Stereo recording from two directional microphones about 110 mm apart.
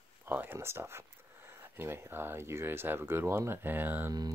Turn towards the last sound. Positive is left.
turn(degrees=-30)  # may be behind; listen again after turning